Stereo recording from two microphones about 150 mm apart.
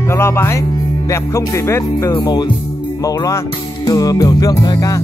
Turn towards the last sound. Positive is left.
turn(degrees=25)  # may be behind; listen again after turning